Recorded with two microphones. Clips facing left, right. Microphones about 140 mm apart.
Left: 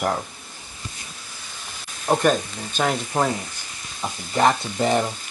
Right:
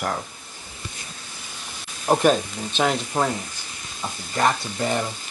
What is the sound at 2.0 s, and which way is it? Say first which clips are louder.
Speech: right 1 dB; centre (ahead or behind).